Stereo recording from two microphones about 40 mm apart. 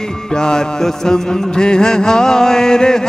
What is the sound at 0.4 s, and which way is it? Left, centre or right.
Music, centre.